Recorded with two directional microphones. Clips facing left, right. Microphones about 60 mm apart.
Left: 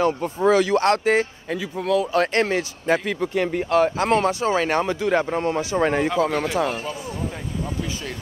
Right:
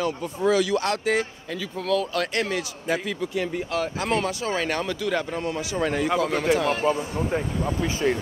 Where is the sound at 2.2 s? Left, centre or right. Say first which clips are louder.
Left 5 dB; left.